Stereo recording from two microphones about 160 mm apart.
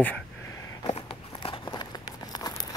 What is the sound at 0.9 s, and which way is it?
Crumpling, 30° left (ahead or behind).